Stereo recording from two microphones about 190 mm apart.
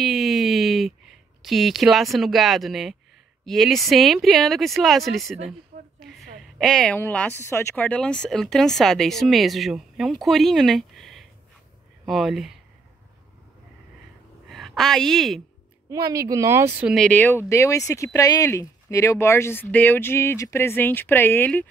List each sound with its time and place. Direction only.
0.0 s a sound: centre (ahead or behind)
1.4 s a woman's voice: centre (ahead or behind)
14.5 s a woman's voice: centre (ahead or behind)
15.9 s a woman's voice: 20° right (ahead or behind)
16.9 s speech: 5° left (ahead or behind)